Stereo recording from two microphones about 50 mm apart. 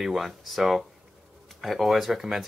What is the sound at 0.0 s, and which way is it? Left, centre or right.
Speech, centre.